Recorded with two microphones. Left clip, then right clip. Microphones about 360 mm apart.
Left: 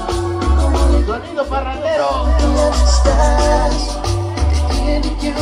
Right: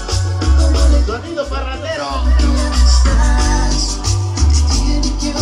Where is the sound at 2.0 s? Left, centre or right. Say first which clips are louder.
Left 5 dB; centre.